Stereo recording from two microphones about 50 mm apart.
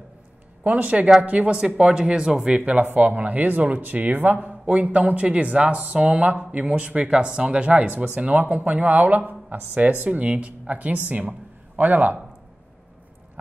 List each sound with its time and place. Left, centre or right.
0.7 s speech: right
2.6 s speech: right